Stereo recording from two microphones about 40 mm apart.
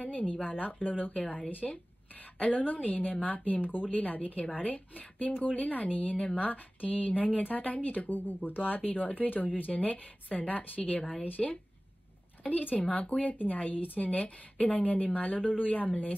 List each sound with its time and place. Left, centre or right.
0.0 s a woman's voice: left
12.7 s speech: centre
13.2 s a woman's voice: left